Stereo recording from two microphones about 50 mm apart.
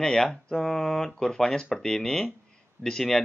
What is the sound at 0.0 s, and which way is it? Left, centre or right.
Speech, centre.